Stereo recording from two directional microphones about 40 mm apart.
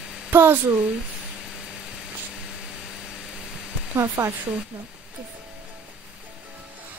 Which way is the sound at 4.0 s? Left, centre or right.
Right.